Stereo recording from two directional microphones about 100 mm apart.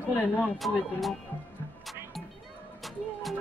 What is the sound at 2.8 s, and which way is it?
Music, centre (ahead or behind).